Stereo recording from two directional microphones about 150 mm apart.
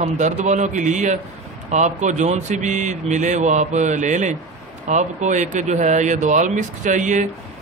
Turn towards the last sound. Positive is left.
turn(degrees=-55)  # may be behind; listen again after turning